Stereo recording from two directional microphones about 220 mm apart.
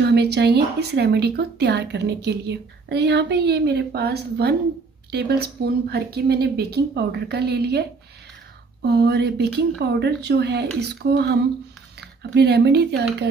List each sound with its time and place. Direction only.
0.0 s speech: 50° right (ahead or behind)
8.8 s speech: 45° right (ahead or behind)